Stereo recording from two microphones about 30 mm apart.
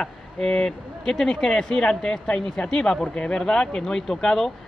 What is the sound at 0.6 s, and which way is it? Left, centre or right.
Speech, centre.